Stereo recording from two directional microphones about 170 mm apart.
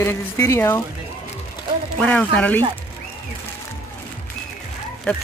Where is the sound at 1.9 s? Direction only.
10° left (ahead or behind).